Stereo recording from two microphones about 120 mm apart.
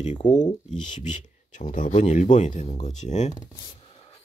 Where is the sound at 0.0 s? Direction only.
80° left.